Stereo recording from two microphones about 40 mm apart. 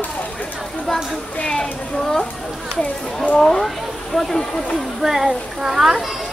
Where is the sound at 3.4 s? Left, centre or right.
Centre.